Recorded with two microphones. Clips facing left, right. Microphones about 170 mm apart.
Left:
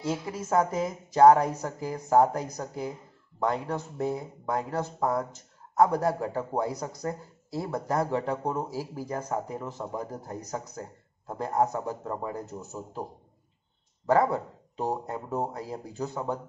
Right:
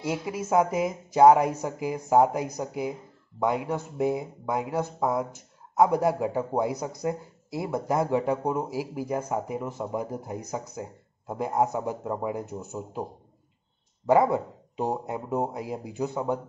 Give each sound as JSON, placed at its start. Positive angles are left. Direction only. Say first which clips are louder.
{"t": 0.0, "sound": "a woman's voice", "louder": "right 2 dB", "side_deg": -10}
{"t": 14.0, "sound": "a woman's voice", "louder": "right 3 dB", "side_deg": -20}